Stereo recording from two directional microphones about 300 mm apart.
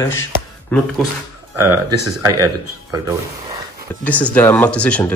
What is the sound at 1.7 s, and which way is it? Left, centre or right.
Speech, right.